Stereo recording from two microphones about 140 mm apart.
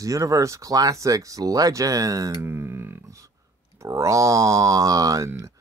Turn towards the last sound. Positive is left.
turn(degrees=-25)  # may be behind; listen again after turning